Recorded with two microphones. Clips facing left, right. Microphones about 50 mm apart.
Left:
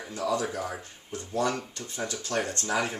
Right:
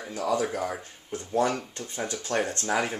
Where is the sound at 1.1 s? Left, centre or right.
Right.